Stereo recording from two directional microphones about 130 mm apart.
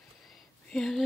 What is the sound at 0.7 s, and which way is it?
Speech, 5° left (ahead or behind).